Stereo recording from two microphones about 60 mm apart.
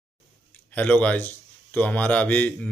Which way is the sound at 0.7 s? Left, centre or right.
Left.